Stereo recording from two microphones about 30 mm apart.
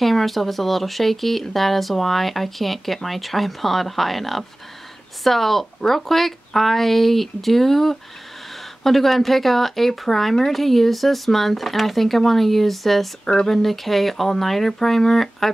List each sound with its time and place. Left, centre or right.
0.0 s speech: centre
13.2 s speech: left
13.5 s speech: centre